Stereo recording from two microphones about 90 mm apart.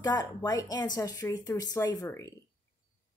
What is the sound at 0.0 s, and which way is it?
A woman's voice, 50° left (ahead or behind).